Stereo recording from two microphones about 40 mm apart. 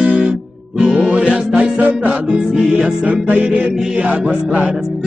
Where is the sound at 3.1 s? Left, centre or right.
Right.